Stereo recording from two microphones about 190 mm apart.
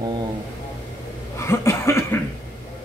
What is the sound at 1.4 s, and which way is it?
Cough, 15° left (ahead or behind).